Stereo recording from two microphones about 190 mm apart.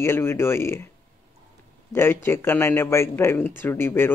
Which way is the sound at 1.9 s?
10° left (ahead or behind).